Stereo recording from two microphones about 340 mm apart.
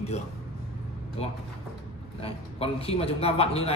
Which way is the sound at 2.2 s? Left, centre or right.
Centre.